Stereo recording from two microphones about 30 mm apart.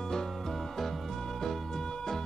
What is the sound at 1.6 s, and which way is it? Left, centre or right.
Music, left.